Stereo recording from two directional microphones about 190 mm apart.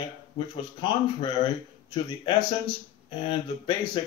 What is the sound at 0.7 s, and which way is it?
Speech, 25° left (ahead or behind).